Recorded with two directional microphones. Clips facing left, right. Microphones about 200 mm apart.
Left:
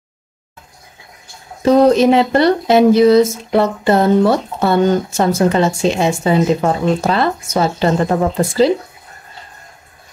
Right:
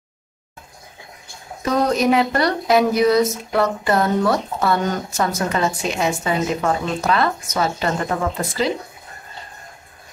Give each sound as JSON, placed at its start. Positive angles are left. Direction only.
{"t": 1.6, "sound": "speech", "side_deg": 30}